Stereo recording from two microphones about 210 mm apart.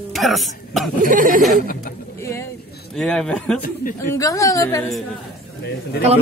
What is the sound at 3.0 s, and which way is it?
Speech, 5° left (ahead or behind).